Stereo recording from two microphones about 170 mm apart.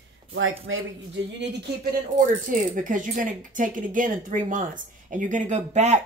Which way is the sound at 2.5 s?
50° right (ahead or behind).